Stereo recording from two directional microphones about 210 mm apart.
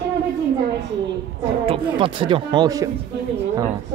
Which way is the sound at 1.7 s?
25° right (ahead or behind).